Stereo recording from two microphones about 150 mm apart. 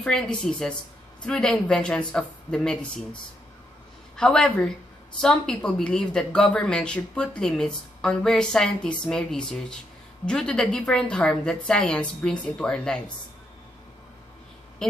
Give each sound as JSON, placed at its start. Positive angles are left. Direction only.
{"t": 0.0, "sound": "speech", "side_deg": 5}
{"t": 4.2, "sound": "speech", "side_deg": 5}
{"t": 14.8, "sound": "speech", "side_deg": 5}